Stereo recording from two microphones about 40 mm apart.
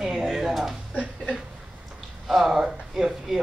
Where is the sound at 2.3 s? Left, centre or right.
Centre.